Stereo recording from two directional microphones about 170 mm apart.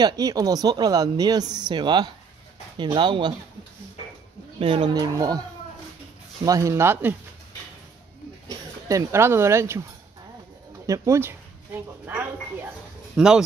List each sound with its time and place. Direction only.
0.0 s a woman's voice: 20° right (ahead or behind)
4.6 s a woman's voice: 35° right (ahead or behind)
6.4 s speech: 20° right (ahead or behind)
8.5 s speech: 20° right (ahead or behind)
10.9 s speech: 15° right (ahead or behind)